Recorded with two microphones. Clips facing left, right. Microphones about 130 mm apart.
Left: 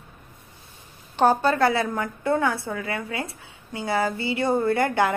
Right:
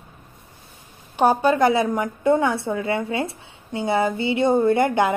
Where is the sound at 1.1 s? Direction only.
10° right (ahead or behind).